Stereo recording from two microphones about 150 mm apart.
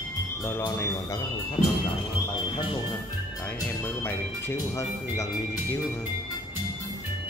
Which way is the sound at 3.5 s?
15° left (ahead or behind).